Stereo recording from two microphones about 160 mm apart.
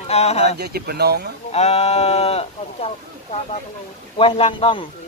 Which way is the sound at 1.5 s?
40° left (ahead or behind).